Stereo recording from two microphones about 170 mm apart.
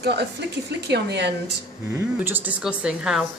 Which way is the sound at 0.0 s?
75° right (ahead or behind).